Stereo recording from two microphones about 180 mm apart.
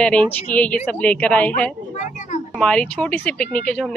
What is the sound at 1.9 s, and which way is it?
Speech, 40° left (ahead or behind).